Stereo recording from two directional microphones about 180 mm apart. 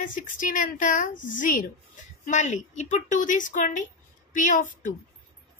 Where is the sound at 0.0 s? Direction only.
50° left (ahead or behind).